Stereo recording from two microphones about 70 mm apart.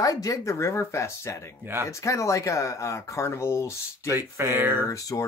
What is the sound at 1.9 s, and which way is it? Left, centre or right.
Speech, left.